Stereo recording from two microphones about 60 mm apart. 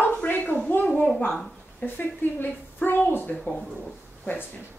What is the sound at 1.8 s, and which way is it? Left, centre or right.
Speech, left.